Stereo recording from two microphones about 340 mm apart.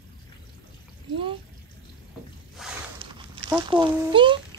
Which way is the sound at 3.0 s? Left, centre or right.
Centre.